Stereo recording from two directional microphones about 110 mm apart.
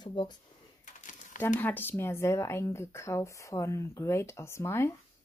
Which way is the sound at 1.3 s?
15° left (ahead or behind).